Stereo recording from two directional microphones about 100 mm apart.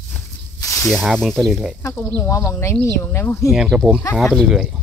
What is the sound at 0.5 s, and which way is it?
Snake, 30° left (ahead or behind).